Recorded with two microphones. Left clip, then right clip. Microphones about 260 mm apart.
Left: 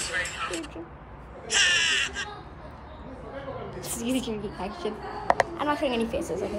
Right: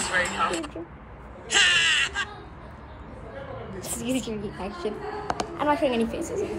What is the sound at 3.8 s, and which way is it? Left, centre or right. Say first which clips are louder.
A woman's voice: even; centre.